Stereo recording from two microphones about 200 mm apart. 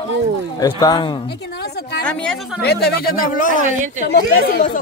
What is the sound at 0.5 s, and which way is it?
Speech, 20° left (ahead or behind).